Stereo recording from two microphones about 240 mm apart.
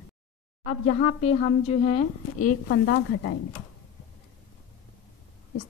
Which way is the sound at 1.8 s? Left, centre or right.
Left.